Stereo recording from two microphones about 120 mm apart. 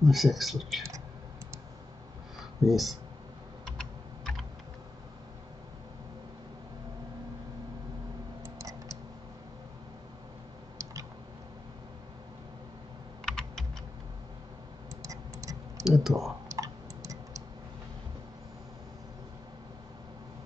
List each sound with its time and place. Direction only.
0.0 s speech: centre (ahead or behind)
2.6 s speech: centre (ahead or behind)
8.5 s a sound: 25° right (ahead or behind)
10.8 s a sound: 25° right (ahead or behind)
13.2 s computer keyboard: 5° left (ahead or behind)
15.0 s tick-tock: 25° right (ahead or behind)
15.8 s speech: centre (ahead or behind)
16.4 s tick-tock: 25° right (ahead or behind)